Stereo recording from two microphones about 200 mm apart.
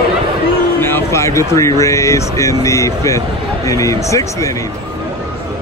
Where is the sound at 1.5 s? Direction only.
15° left (ahead or behind).